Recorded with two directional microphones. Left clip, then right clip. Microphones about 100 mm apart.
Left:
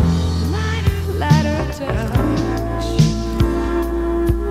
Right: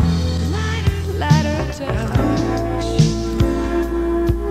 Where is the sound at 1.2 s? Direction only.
45° right (ahead or behind).